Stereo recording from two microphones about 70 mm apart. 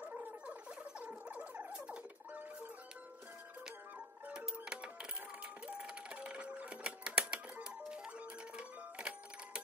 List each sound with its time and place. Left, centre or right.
1.0 s a sound: right
4.3 s music: centre
5.7 s typewriter: centre
8.5 s music: centre